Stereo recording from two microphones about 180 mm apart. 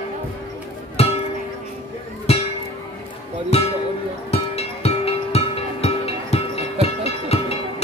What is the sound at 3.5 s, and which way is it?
Music, 35° left (ahead or behind).